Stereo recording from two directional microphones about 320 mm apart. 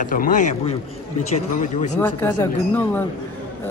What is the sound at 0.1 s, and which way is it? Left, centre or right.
A man's voice, left.